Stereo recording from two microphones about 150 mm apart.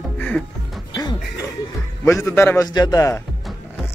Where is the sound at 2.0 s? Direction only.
20° left (ahead or behind).